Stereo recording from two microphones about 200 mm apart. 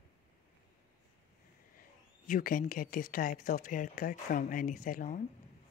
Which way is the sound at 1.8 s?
45° left (ahead or behind).